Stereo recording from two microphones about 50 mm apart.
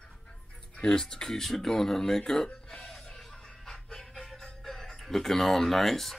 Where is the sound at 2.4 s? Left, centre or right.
Centre.